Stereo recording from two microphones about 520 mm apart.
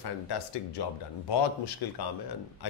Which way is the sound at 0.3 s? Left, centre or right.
Left.